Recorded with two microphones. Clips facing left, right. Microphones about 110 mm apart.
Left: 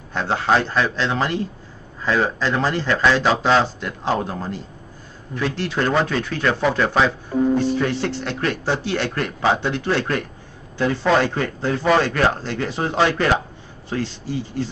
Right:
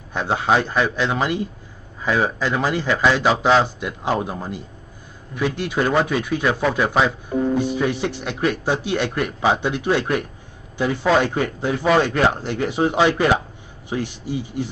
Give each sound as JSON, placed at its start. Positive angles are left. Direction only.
{"t": 0.1, "sound": "speech", "side_deg": -15}